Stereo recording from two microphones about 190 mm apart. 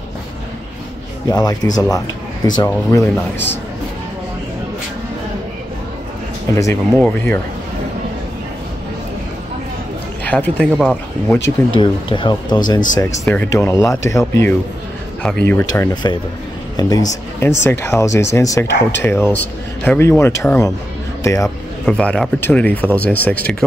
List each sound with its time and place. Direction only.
1.2 s speech: 20° left (ahead or behind)
6.5 s speech: 15° left (ahead or behind)
7.0 s speech: 5° left (ahead or behind)
10.2 s speech: 10° left (ahead or behind)
10.8 s speech: centre (ahead or behind)
11.7 s speech: 25° left (ahead or behind); by 15.6 s 10° left (ahead or behind)
15.6 s speech: 20° left (ahead or behind)
21.8 s speech: 5° left (ahead or behind)